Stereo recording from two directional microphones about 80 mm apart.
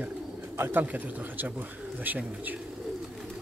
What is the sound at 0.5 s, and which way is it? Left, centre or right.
Speech, right.